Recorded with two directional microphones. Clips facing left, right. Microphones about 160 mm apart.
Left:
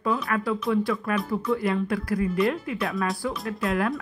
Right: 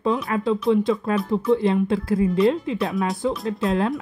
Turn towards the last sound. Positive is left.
turn(degrees=-25)  # may be behind; listen again after turning